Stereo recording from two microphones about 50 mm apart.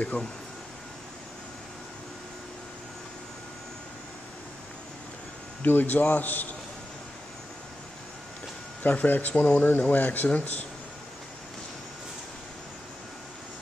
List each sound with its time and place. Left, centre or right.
0.0 s speech: left
5.6 s speech: left
8.8 s speech: left